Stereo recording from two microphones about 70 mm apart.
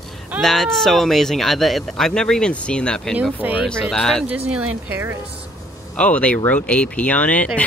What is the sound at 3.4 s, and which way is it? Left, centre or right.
Speech, right.